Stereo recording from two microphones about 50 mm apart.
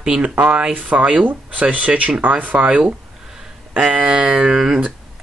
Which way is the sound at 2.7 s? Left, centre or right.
Centre.